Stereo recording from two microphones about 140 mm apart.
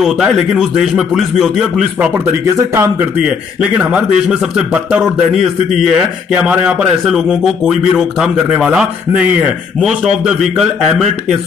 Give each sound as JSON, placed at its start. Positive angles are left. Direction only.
{"t": 0.0, "sound": "a man's voice", "side_deg": 0}
{"t": 2.5, "sound": "speech", "side_deg": -20}
{"t": 3.2, "sound": "a man's voice", "side_deg": -10}